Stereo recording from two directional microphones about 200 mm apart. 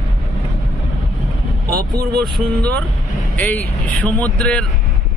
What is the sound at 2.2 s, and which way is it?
Speech, 5° left (ahead or behind).